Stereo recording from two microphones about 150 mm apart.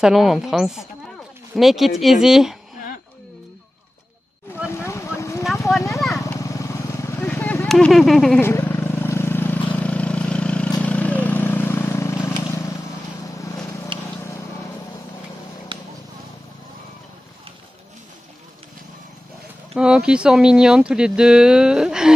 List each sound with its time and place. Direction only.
0.0 s speech: 5° right (ahead or behind)
4.7 s vehicle: 20° left (ahead or behind)
5.9 s horse: centre (ahead or behind)
6.1 s vehicle: 20° left (ahead or behind)
7.6 s speech: centre (ahead or behind)
8.4 s vehicle: 15° left (ahead or behind)
13.9 s a sound: 35° right (ahead or behind)
15.7 s a sound: 35° right (ahead or behind)
19.7 s speech: 5° right (ahead or behind)